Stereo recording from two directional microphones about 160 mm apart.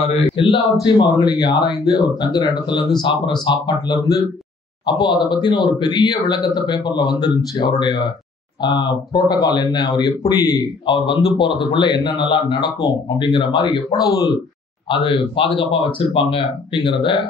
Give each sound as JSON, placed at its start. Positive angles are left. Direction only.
{"t": 0.4, "sound": "speech", "side_deg": 30}